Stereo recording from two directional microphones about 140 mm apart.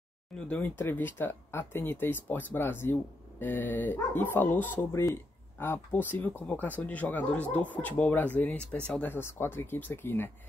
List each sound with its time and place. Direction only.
0.5 s speech: 15° left (ahead or behind)